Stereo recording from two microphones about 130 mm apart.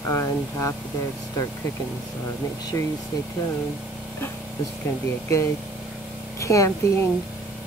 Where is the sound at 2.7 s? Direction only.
25° left (ahead or behind).